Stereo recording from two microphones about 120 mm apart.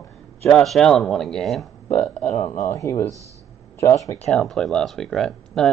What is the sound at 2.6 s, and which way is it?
Speech, 25° left (ahead or behind).